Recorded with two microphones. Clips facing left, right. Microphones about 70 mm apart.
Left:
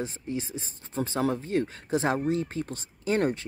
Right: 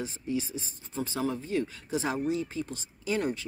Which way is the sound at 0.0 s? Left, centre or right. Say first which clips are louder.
Even; left.